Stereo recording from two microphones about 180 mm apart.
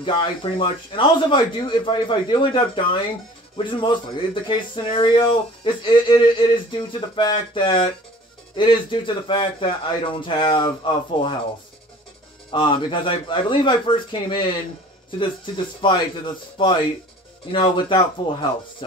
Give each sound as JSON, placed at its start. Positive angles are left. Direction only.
{"t": 0.0, "sound": "speech", "side_deg": 25}
{"t": 12.4, "sound": "speech", "side_deg": 30}